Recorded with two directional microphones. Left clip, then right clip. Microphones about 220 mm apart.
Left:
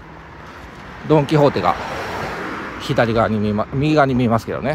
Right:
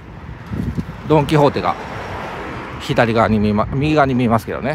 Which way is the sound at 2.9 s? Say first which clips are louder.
Right 2 dB; 10° right (ahead or behind).